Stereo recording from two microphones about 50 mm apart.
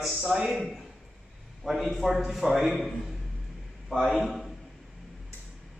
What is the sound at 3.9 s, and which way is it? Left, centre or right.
Speech, centre.